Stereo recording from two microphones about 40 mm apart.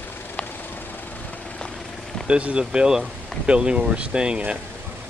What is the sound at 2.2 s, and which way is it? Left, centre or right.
Speech, right.